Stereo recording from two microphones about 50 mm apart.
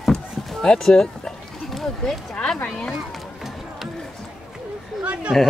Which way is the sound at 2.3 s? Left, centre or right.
Centre.